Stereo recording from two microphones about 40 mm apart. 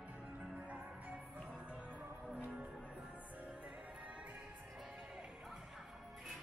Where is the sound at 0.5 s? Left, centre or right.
Right.